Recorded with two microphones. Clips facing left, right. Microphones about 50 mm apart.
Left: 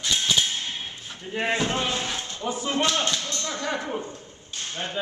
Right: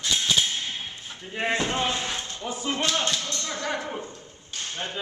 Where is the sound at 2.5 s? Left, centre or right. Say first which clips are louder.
Left 2 dB; centre.